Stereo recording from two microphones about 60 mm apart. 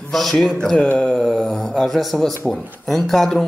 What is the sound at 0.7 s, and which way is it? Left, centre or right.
Speech, left.